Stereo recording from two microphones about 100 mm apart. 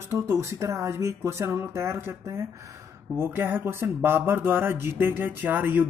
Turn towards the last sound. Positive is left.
turn(degrees=-20)  # may be behind; listen again after turning